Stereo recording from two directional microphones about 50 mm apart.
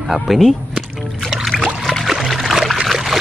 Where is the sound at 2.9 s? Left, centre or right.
Centre.